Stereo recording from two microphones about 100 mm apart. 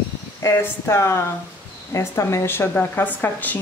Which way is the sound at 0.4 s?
25° left (ahead or behind).